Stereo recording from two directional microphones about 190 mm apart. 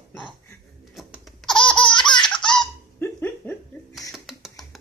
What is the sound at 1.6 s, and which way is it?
Laughter, 25° left (ahead or behind).